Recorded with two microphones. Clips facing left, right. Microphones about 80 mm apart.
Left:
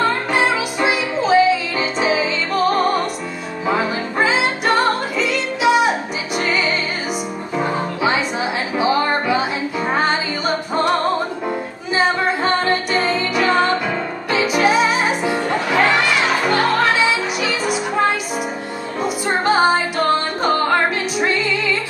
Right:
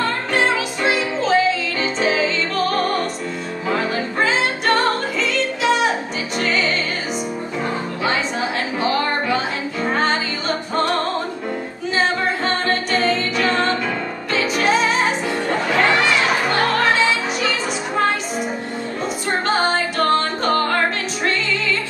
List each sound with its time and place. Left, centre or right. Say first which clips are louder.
0.3 s music: left 1 dB; centre
4.2 s music: left 2 dB; centre
8.7 s music: left 4 dB; centre
12.9 s music: left 1 dB; centre
19.0 s music: left 4 dB; centre